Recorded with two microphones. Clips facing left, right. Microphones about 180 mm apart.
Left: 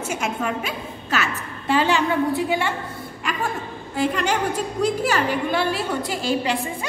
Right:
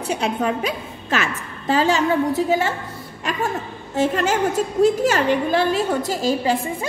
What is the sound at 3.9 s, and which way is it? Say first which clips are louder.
A woman's voice: right 3 dB; 40° right (ahead or behind).